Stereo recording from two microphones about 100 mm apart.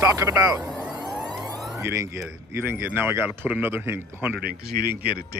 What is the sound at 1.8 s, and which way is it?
Speech, 30° right (ahead or behind).